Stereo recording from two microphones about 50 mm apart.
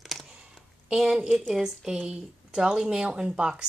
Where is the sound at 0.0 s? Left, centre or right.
Centre.